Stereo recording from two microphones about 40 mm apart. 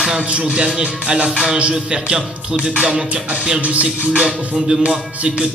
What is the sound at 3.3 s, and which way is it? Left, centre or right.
Music, right.